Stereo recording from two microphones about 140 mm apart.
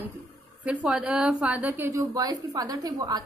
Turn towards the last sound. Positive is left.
turn(degrees=-25)  # may be behind; listen again after turning